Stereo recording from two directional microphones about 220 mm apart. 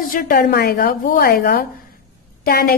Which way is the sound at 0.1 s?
40° left (ahead or behind).